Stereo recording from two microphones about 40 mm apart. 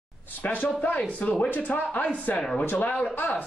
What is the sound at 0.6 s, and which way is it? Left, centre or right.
A man's voice, left.